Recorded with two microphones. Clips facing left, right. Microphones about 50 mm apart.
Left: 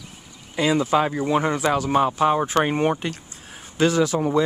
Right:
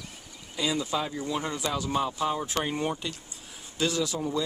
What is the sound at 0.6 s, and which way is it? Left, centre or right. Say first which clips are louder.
Speech: left 9 dB; left.